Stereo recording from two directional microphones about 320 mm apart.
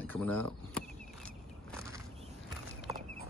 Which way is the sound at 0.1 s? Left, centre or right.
Centre.